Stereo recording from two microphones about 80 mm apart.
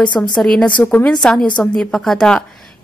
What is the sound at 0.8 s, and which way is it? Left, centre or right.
Speech, left.